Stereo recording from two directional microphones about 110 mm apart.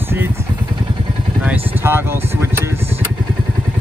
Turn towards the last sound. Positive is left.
turn(degrees=-20)  # may be behind; listen again after turning